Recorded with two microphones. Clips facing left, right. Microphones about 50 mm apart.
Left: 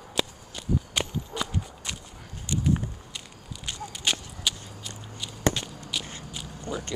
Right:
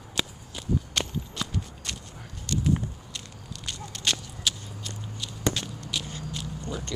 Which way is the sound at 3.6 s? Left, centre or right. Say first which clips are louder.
Left 1 dB; centre.